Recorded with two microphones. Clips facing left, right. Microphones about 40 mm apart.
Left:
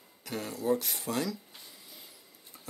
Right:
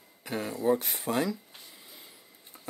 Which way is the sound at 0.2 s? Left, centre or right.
Centre.